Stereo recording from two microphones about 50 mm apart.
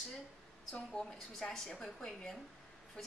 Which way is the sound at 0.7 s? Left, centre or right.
Centre.